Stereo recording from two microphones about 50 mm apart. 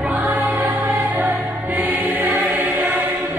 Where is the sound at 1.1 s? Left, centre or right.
Right.